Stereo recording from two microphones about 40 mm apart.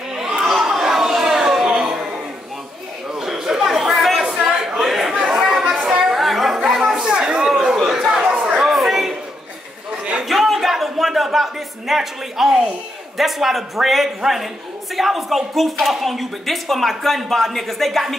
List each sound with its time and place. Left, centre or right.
0.1 s chatter: centre
3.1 s chatter: centre
6.1 s chatter: centre
6.9 s chatter: right
8.3 s a sound: centre
10.2 s a sound: centre
13.2 s speech: centre